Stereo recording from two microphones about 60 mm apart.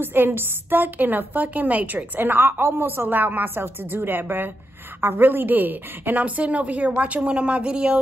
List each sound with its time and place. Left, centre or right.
0.0 s a woman's voice: right; by 8.0 s centre